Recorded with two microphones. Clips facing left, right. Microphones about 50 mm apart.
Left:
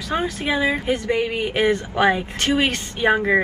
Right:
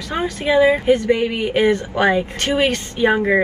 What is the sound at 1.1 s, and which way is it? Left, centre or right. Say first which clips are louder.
Speech: right 3 dB; centre.